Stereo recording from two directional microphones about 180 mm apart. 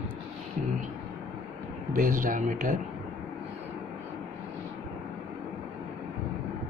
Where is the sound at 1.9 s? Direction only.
50° right (ahead or behind).